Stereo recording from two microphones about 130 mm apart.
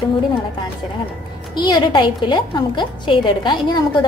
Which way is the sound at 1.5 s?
35° left (ahead or behind).